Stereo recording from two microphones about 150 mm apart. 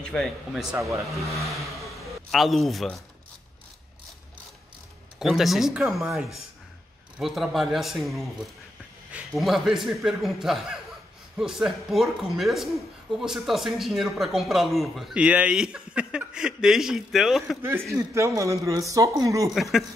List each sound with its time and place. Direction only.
0.0 s speech: 5° left (ahead or behind)
5.2 s speech: centre (ahead or behind)
17.6 s a man's voice: 15° right (ahead or behind)
19.5 s speech: centre (ahead or behind)